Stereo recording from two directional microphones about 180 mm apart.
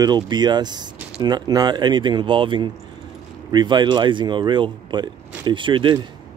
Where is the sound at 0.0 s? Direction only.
25° right (ahead or behind).